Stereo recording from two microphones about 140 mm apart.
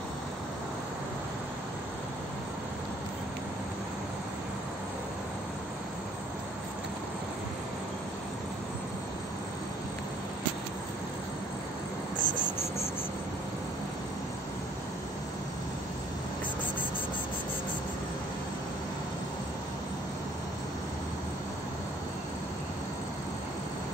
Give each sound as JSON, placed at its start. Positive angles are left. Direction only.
{"t": 12.2, "sound": "cricket", "side_deg": 70}